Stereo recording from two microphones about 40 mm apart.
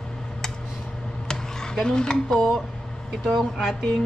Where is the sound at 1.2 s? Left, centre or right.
Centre.